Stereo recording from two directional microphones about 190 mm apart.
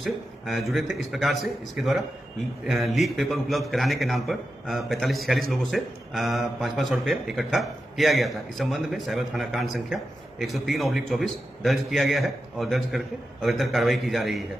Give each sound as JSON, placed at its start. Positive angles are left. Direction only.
{"t": 0.0, "sound": "a man's voice", "side_deg": 0}